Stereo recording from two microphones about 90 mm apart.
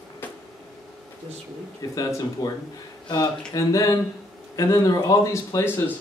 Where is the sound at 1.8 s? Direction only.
40° left (ahead or behind).